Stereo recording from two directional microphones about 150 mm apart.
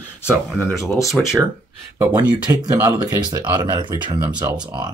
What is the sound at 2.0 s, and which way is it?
Speech, 30° right (ahead or behind).